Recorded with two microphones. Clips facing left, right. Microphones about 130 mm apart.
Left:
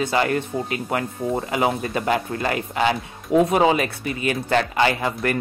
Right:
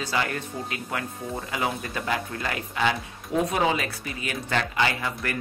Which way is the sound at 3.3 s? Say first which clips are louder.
Left 7 dB; 60° left (ahead or behind).